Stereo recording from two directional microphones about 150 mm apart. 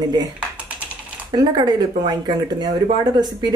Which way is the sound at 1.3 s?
25° right (ahead or behind).